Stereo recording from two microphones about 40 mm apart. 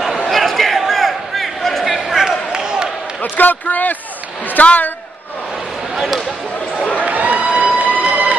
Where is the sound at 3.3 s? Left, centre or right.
Left.